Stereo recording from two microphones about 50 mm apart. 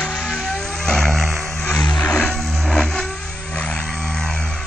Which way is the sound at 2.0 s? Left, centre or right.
Centre.